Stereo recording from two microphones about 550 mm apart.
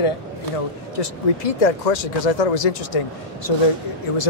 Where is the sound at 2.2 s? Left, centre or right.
Left.